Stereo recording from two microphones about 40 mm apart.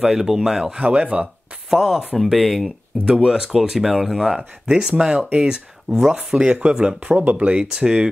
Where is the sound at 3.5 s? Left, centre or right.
Centre.